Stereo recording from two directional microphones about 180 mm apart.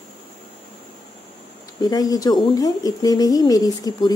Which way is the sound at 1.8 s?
20° left (ahead or behind).